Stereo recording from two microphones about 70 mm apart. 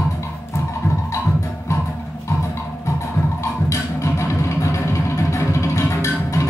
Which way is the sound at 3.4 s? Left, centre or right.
Left.